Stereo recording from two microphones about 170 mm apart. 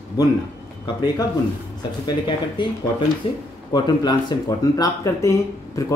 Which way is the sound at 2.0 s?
25° left (ahead or behind).